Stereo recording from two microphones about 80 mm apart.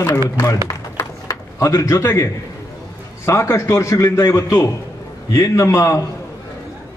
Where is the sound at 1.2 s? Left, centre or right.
Left.